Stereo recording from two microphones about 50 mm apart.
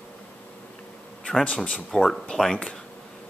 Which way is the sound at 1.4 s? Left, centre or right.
Left.